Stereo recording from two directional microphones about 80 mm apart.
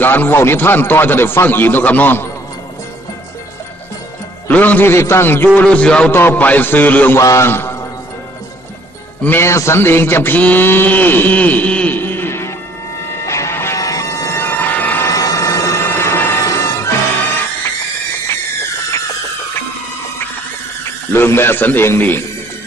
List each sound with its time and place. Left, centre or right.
0.0 s a man's voice: left
4.5 s a man's voice: left
5.6 s music: centre
6.1 s a man's voice: left
7.2 s a man's voice: left
9.2 s a man's voice: left
13.2 s music: left
15.0 s music: left
21.1 s a man's voice: left